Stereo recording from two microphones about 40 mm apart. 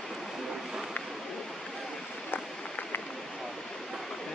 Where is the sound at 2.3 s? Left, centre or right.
Left.